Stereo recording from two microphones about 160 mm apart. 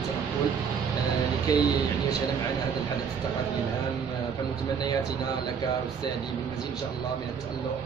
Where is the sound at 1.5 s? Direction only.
20° left (ahead or behind).